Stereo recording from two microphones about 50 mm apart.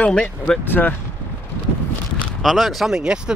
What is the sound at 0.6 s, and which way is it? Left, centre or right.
Speech, left.